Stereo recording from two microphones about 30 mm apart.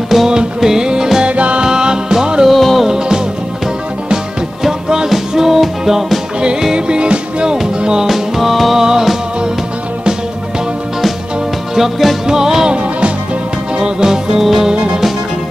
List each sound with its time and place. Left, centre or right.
0.1 s music: centre
0.6 s music: centre
1.2 s music: right
1.6 s music: right
2.4 s music: centre
4.8 s music: right
6.7 s music: right
8.1 s music: centre
8.7 s music: centre
11.7 s music: centre
12.6 s music: right
14.4 s music: centre
14.7 s music: right